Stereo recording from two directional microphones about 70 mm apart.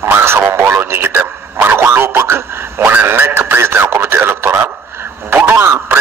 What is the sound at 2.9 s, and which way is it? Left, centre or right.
Radio, right.